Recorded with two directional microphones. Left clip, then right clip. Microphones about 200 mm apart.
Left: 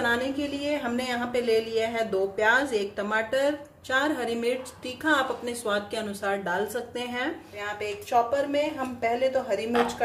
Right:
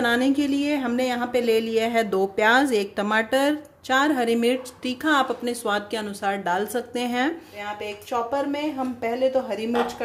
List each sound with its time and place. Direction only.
0.0 s speech: 45° right (ahead or behind)
7.8 s a woman's voice: 30° right (ahead or behind)